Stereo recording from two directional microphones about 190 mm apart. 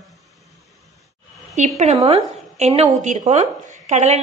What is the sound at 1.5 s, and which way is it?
A woman's voice, 35° right (ahead or behind).